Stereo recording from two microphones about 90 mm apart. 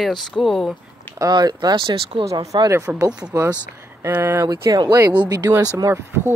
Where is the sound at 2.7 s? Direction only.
35° right (ahead or behind).